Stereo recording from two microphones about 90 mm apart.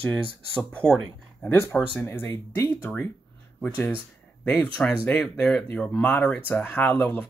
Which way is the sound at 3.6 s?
20° left (ahead or behind).